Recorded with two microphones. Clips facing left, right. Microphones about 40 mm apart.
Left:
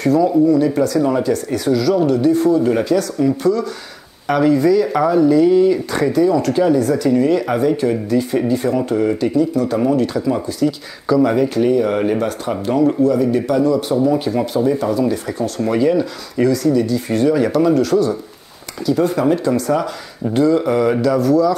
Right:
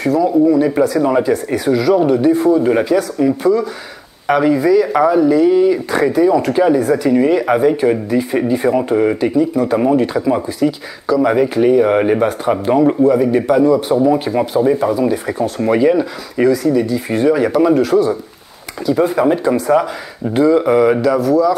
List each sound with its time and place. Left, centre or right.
0.0 s speech: centre